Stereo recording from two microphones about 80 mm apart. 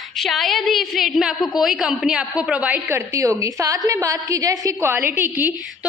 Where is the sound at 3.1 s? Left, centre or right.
Right.